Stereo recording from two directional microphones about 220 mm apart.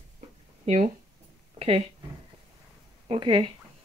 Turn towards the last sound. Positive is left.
turn(degrees=-20)  # may be behind; listen again after turning